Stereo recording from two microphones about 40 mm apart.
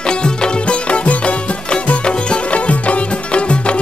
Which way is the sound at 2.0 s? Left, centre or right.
Left.